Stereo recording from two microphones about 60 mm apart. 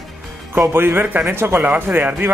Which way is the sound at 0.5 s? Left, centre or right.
Right.